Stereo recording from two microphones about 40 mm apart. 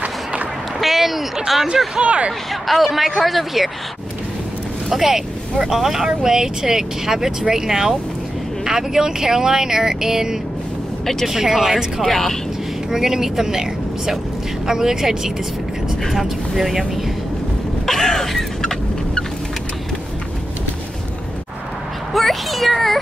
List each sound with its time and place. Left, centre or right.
0.0 s run: right
0.7 s speech: centre
2.0 s speech: right
2.5 s a man's voice: centre
4.8 s speech: centre
12.1 s speech: centre
12.9 s a man's voice: centre
17.8 s a sound: centre
22.1 s speech: centre